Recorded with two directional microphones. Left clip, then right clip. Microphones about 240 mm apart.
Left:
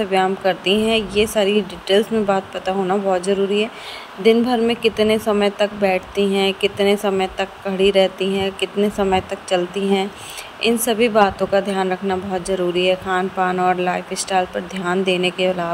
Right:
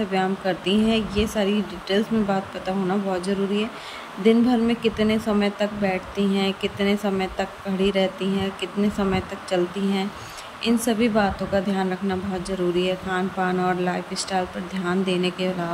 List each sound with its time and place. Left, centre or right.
0.0 s speech: centre